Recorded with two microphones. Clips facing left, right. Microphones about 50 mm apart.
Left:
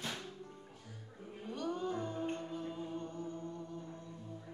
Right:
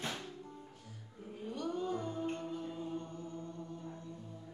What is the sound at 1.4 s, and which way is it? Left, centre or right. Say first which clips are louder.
Music: right 1 dB; left.